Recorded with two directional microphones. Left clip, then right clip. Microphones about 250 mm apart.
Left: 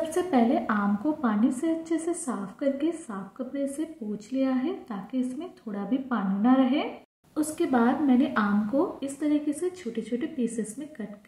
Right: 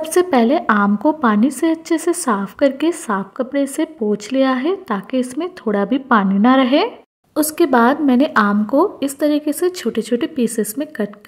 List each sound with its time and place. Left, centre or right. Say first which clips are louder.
0.1 s a woman's voice: right 13 dB; right